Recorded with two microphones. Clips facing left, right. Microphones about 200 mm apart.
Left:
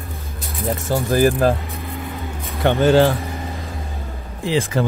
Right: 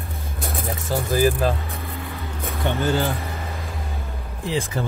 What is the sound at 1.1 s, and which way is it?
Speech, 55° left (ahead or behind).